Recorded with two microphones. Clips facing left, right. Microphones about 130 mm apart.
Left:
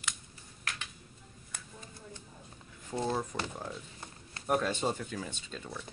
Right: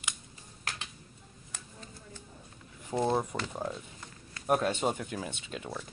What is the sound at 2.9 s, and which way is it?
Speech, 25° right (ahead or behind).